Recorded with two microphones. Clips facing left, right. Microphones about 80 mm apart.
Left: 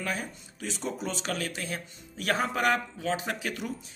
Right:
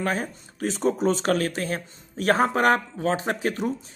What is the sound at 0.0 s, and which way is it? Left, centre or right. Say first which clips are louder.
Speech: right 7 dB; right.